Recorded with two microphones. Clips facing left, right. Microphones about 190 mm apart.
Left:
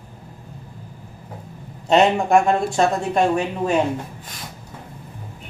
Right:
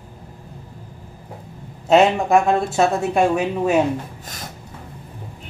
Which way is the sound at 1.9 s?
Centre (ahead or behind).